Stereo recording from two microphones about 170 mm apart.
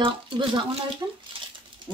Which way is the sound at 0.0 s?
30° right (ahead or behind).